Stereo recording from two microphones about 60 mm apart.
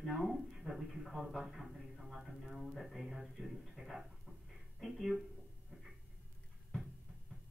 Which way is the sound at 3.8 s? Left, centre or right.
Centre.